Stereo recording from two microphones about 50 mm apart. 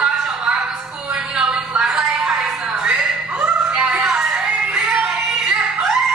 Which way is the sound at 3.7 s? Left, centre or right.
Centre.